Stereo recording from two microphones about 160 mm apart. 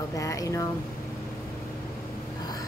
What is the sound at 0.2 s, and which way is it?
Speech, 20° left (ahead or behind).